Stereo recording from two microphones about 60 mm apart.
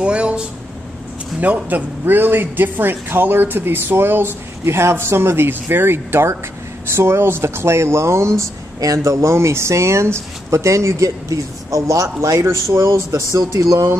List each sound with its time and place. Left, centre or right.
0.0 s a sound: centre
1.4 s speech: right
8.7 s speech: right